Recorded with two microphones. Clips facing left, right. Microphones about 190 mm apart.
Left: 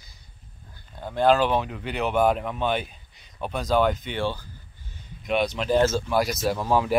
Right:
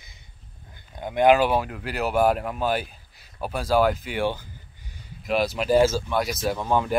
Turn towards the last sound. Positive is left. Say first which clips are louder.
# left 1 dB
turn(degrees=0)  # may be behind; listen again after turning